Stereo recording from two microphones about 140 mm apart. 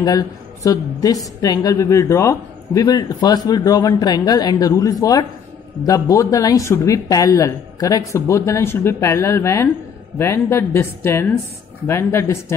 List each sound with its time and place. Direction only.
0.0 s a woman's voice: 25° left (ahead or behind)